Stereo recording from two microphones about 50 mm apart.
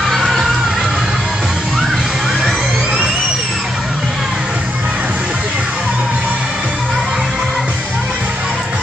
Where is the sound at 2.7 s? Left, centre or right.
Centre.